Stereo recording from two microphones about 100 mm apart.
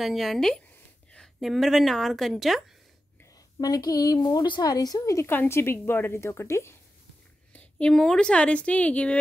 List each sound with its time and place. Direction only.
0.0 s a woman's voice: centre (ahead or behind)
3.5 s a woman's voice: 40° left (ahead or behind)
7.5 s a woman's voice: 10° left (ahead or behind)